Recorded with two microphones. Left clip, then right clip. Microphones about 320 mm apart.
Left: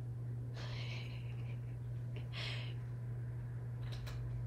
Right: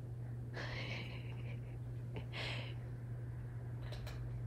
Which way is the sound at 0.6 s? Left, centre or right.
Right.